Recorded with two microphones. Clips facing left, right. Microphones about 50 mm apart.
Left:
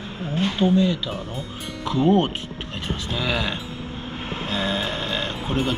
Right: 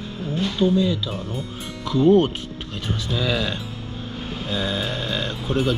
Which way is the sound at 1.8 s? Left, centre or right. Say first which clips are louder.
Right 3 dB; left.